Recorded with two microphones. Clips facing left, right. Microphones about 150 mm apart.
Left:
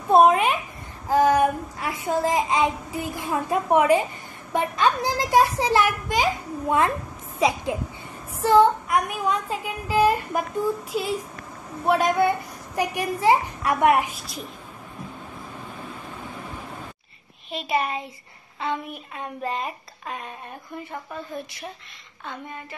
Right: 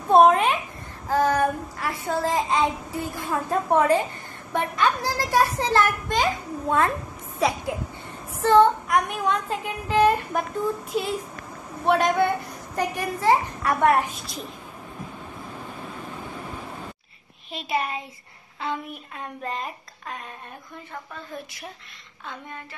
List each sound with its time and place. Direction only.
0.1 s a sound: 5° left (ahead or behind)
1.0 s a child's voice: 15° left (ahead or behind)
8.4 s speech: 5° left (ahead or behind)
12.7 s speech: 15° left (ahead or behind)
17.5 s speech: centre (ahead or behind)